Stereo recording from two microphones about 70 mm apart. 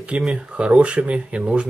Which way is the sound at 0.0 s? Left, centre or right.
Centre.